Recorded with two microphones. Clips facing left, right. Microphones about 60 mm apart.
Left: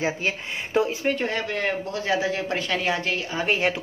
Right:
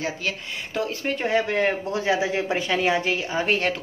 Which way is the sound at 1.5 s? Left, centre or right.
Right.